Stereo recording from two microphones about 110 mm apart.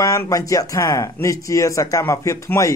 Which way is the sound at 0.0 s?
30° left (ahead or behind).